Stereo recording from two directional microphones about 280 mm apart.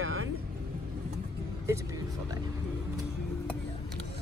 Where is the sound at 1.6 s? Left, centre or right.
Centre.